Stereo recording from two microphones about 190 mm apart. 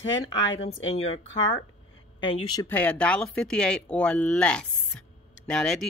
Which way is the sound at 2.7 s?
5° left (ahead or behind).